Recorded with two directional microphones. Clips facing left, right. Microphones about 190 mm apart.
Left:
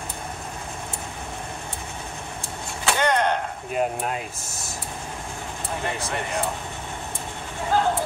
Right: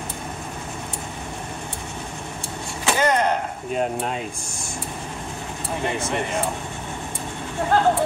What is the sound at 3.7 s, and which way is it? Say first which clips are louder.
Speech: right 1 dB; 5° left (ahead or behind).